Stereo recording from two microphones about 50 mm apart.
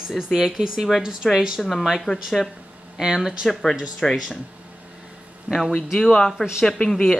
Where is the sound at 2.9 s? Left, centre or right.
Centre.